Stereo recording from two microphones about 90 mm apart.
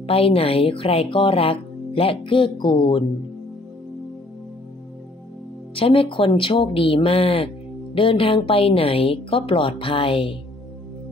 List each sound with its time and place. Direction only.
0.0 s a woman's voice: 90° left; by 3.1 s 60° left (ahead or behind)
5.8 s a woman's voice: 90° left